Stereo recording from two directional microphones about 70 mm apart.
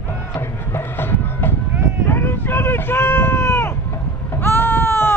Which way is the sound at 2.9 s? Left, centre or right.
Left.